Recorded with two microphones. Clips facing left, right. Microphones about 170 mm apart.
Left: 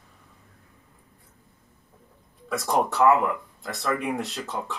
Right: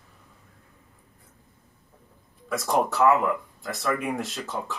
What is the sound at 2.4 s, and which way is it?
Speech, centre (ahead or behind).